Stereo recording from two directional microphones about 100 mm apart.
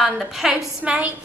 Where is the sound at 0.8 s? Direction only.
10° right (ahead or behind).